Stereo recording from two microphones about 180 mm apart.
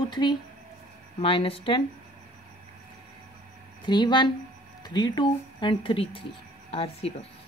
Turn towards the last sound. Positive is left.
turn(degrees=35)  # may be behind; listen again after turning